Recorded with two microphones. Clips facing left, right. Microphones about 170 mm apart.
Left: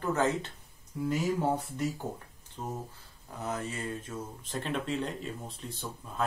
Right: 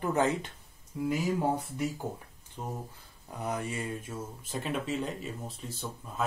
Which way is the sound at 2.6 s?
15° right (ahead or behind).